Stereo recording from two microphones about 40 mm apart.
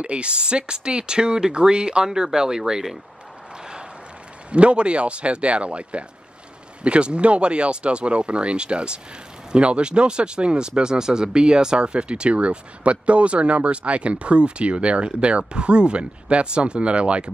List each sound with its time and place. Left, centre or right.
0.0 s speech: right
4.5 s speech: right